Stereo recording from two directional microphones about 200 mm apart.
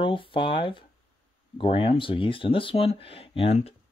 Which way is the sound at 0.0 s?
25° left (ahead or behind).